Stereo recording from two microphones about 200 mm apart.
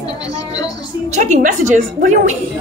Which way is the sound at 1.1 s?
40° right (ahead or behind).